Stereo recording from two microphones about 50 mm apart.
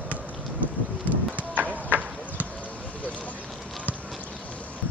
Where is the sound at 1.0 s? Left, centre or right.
Right.